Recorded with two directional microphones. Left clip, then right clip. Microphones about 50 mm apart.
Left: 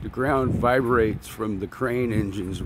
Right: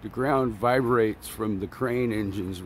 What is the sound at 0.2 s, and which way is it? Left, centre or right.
Speech, left.